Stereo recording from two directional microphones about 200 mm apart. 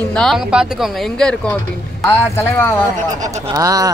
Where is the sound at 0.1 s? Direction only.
Centre (ahead or behind).